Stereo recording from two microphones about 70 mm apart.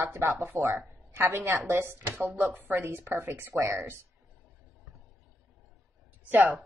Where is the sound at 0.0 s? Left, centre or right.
Right.